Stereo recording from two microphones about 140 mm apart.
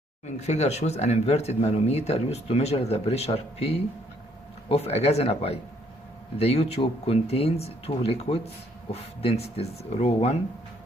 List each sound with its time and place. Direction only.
0.4 s speech: 55° left (ahead or behind)